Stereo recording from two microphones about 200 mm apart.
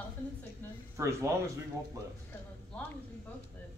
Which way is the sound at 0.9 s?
15° right (ahead or behind).